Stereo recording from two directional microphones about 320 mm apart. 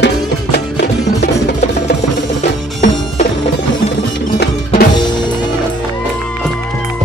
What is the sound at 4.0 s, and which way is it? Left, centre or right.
Music, left.